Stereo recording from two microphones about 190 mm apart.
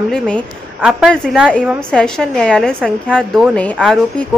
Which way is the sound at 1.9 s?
5° left (ahead or behind).